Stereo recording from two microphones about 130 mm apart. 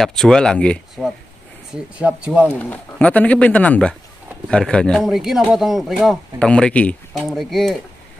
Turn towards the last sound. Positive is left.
turn(degrees=0)  # may be behind; listen again after turning